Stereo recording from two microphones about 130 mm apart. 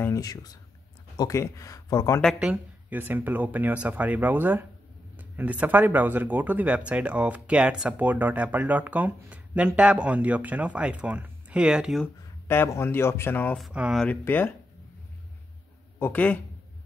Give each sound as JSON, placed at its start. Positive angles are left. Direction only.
{"t": 0.0, "sound": "speech", "side_deg": 25}
{"t": 2.3, "sound": "speech", "side_deg": -10}
{"t": 12.4, "sound": "speech", "side_deg": 20}
{"t": 13.6, "sound": "speech", "side_deg": -5}
{"t": 14.0, "sound": "speech", "side_deg": 15}
{"t": 16.0, "sound": "speech", "side_deg": 15}